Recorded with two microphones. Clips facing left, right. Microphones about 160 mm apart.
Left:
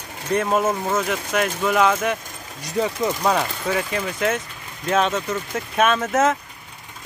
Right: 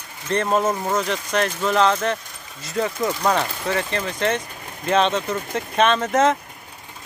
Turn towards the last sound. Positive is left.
turn(degrees=5)  # may be behind; listen again after turning